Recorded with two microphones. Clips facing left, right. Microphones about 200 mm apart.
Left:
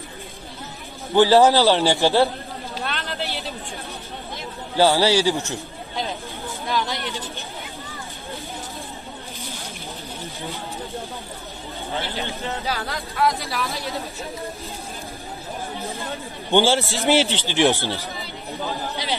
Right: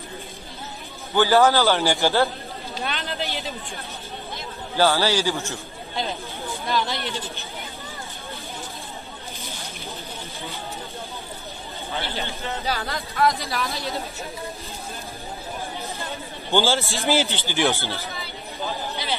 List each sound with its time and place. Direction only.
1.1 s a man's voice: 30° left (ahead or behind)
2.8 s speech: centre (ahead or behind)
4.7 s a man's voice: 20° left (ahead or behind)
12.2 s speech: 5° left (ahead or behind)
16.5 s a man's voice: 15° left (ahead or behind)
17.2 s speech: 80° left
17.6 s a man's voice: 15° left (ahead or behind)